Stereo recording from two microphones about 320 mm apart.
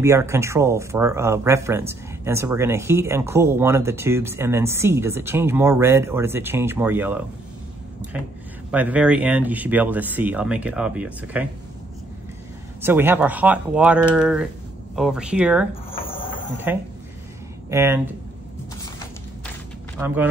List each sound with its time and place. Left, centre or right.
0.0 s speech: centre
8.7 s speech: centre
12.8 s speech: centre
15.9 s cricket: centre
16.7 s speech: centre